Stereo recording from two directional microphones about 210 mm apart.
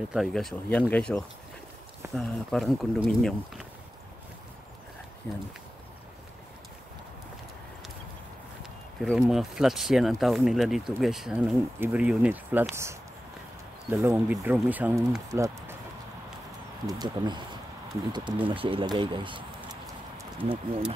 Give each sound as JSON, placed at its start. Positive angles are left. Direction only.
{"t": 0.1, "sound": "speech", "side_deg": 0}
{"t": 5.2, "sound": "speech", "side_deg": 10}
{"t": 9.0, "sound": "speech", "side_deg": 0}
{"t": 16.8, "sound": "speech", "side_deg": -20}